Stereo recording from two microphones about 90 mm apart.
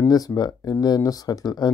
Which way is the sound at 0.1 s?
45° left (ahead or behind).